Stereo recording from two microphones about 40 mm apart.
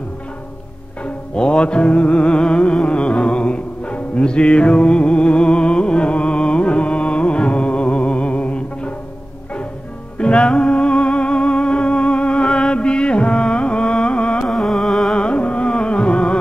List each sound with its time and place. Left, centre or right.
1.0 s music: left
10.1 s music: left
14.4 s music: centre
15.1 s carnatic music: left